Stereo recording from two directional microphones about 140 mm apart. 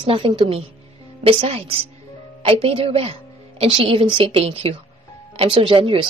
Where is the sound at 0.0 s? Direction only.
35° right (ahead or behind).